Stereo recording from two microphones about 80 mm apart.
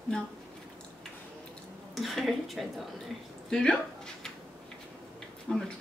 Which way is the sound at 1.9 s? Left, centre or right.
Centre.